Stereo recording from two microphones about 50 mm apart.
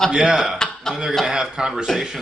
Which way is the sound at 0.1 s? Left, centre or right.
Centre.